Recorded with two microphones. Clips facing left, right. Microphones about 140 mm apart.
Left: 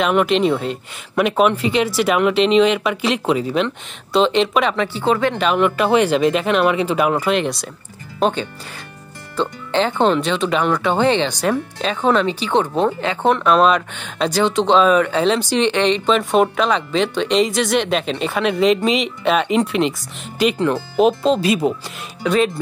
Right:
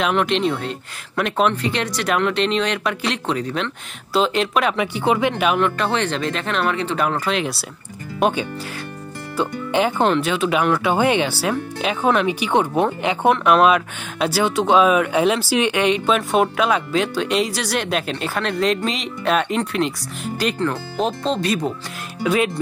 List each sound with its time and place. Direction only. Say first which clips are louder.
0.0 s speech: left 3 dB; 5° left (ahead or behind)
4.7 s speech: left 1 dB; 15° right (ahead or behind)
5.6 s speech: left 5 dB; 10° left (ahead or behind)
22.2 s speech: left 2 dB; 5° right (ahead or behind)